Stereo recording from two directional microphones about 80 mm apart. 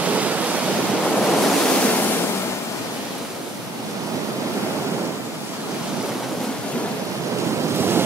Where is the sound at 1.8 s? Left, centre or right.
Centre.